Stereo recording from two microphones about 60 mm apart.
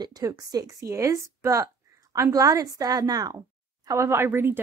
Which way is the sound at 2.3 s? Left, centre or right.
Right.